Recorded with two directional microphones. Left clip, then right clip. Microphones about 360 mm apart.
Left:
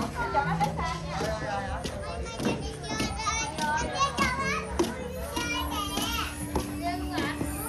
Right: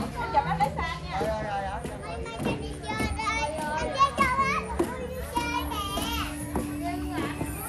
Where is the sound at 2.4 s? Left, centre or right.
Centre.